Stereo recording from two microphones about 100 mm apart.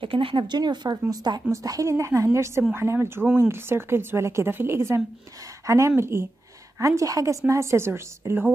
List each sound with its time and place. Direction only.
0.0 s speech: 65° right (ahead or behind)
0.6 s a woman's voice: 45° right (ahead or behind); by 8.5 s 25° right (ahead or behind)